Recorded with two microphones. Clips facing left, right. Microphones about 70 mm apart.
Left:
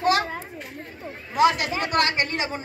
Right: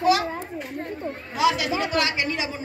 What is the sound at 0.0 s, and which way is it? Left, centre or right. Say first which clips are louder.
Children playing: right 1 dB; left.